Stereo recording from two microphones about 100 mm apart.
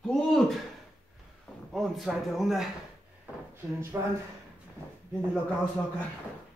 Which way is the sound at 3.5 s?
25° right (ahead or behind).